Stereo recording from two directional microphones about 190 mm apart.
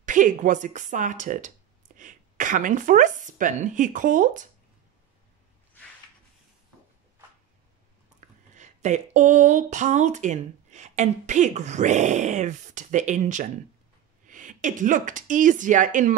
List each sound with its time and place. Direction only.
0.0 s a woman's voice: 45° right (ahead or behind)
8.2 s a sound: 40° right (ahead or behind)
8.5 s speech: 40° right (ahead or behind)